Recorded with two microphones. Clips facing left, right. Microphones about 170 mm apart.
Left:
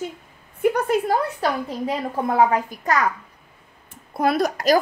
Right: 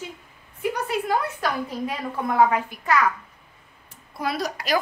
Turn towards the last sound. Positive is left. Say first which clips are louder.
# left 7 dB
turn(degrees=45)  # may be behind; listen again after turning